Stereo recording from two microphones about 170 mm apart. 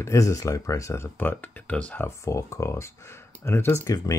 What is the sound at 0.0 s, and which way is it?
Speech, 20° left (ahead or behind).